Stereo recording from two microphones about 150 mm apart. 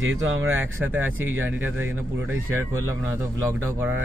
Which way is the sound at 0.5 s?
15° right (ahead or behind).